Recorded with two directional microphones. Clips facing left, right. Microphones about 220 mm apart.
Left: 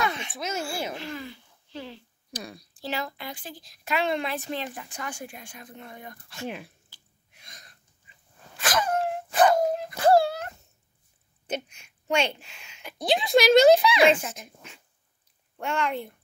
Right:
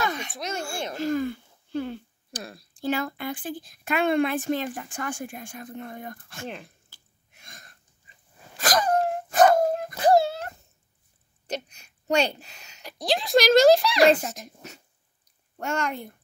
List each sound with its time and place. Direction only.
0.0 s a sound: 40° right (ahead or behind)
0.3 s speech: 5° left (ahead or behind)
0.9 s speech: 45° right (ahead or behind)
2.4 s speech: centre (ahead or behind)
2.8 s speech: 50° right (ahead or behind)
6.4 s speech: 5° left (ahead or behind)
7.3 s a sound: 50° right (ahead or behind)
8.5 s dog: 40° right (ahead or behind)
9.9 s wail: 20° right (ahead or behind)
11.7 s a woman's voice: 40° right (ahead or behind)
12.8 s speech: centre (ahead or behind)
14.0 s speech: 40° right (ahead or behind)